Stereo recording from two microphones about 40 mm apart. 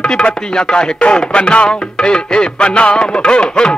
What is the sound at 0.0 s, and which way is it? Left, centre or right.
Music, left.